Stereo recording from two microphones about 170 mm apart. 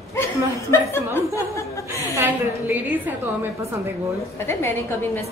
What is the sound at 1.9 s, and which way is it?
A woman's voice, 15° right (ahead or behind).